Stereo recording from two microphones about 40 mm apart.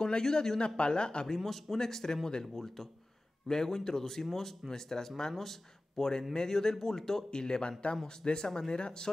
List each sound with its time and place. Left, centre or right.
0.0 s speech: centre
1.2 s speech: centre